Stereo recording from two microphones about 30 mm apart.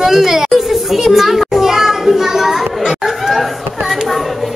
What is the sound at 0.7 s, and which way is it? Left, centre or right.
Children playing, centre.